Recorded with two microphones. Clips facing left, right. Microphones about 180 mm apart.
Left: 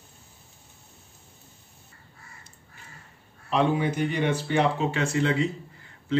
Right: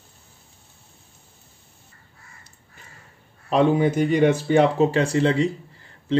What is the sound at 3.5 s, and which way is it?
Speech, 45° right (ahead or behind).